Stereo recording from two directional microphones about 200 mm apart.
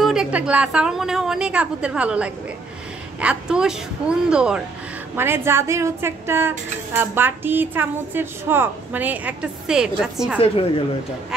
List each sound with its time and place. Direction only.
0.0 s a woman's voice: 5° right (ahead or behind)
10.4 s a woman's voice: 30° left (ahead or behind)